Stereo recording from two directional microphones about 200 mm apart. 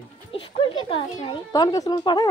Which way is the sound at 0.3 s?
25° left (ahead or behind).